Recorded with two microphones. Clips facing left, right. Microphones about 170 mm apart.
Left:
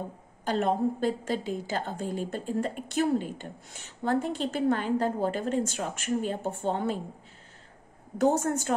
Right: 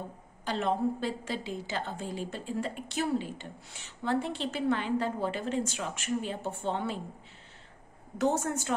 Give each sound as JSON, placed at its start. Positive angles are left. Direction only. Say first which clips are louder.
{"t": 0.5, "sound": "a woman's voice", "louder": "left 3 dB", "side_deg": 45}
{"t": 8.2, "sound": "a woman's voice", "louder": "left 4 dB", "side_deg": 45}